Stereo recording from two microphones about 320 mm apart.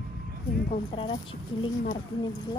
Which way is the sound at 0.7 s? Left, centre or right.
Centre.